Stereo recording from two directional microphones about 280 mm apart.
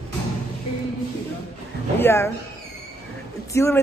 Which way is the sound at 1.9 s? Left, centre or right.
Centre.